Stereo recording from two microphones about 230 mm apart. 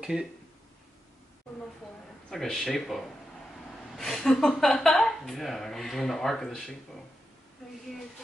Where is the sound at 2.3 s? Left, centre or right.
Centre.